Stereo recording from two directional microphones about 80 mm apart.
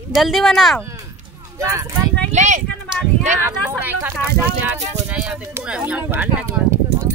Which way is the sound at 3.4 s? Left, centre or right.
Right.